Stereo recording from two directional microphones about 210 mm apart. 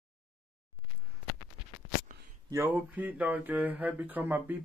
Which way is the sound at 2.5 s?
10° right (ahead or behind).